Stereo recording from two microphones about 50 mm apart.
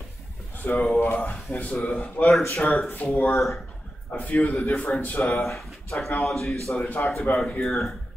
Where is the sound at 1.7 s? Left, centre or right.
Centre.